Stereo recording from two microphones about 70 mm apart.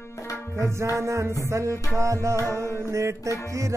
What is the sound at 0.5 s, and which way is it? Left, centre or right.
Music, right.